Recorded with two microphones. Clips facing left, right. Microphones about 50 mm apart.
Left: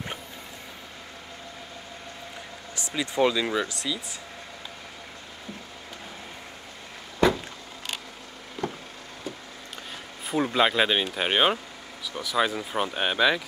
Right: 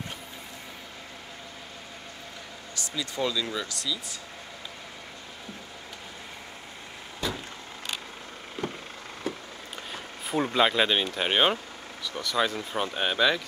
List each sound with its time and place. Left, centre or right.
2.9 s speech: left
7.2 s a sound: left
8.6 s vehicle: right
10.2 s speech: centre